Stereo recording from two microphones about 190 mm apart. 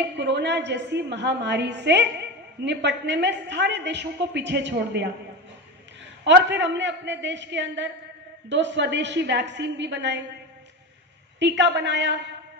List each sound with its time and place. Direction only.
0.1 s a woman's voice: 65° right (ahead or behind)
6.2 s a woman's voice: 65° right (ahead or behind)
11.3 s a woman's voice: 70° right (ahead or behind)